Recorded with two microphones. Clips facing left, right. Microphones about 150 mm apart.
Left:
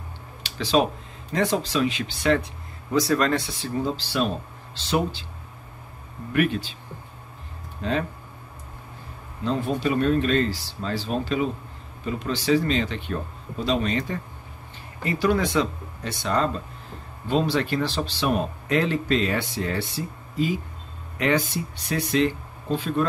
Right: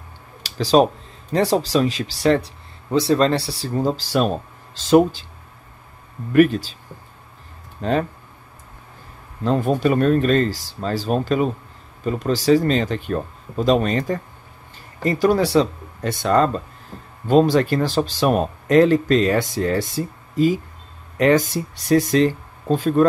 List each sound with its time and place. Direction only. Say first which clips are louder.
0.4 s a sound: right 6 dB; 40° right (ahead or behind)
1.3 s speech: right 6 dB; 35° right (ahead or behind)
6.3 s speech: right 8 dB; 40° right (ahead or behind)
7.8 s speech: right 5 dB; 45° right (ahead or behind)
9.4 s speech: right 6 dB; 50° right (ahead or behind)
16.0 s speech: right 7 dB; 50° right (ahead or behind)